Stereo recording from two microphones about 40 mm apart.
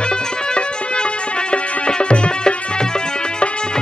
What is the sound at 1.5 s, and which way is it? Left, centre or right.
Music, left.